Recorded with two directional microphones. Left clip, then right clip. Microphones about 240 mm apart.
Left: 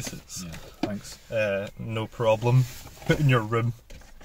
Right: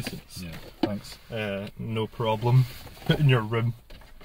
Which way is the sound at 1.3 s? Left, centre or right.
Centre.